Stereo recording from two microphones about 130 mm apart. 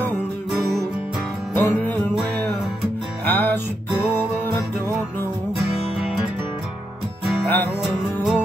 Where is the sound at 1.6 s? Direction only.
20° left (ahead or behind).